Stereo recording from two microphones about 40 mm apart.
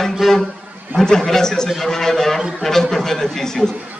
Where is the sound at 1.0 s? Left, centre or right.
Centre.